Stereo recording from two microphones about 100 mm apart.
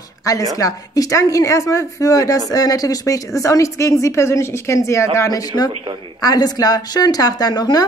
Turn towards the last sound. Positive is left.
turn(degrees=45)  # may be behind; listen again after turning